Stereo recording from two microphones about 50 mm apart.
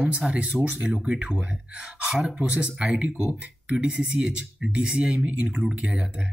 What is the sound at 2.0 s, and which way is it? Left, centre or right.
Speech, centre.